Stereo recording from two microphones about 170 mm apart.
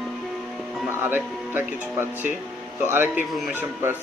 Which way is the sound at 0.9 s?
10° right (ahead or behind).